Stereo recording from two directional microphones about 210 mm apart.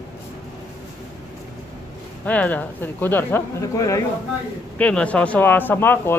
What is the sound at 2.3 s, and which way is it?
Speech, 5° left (ahead or behind).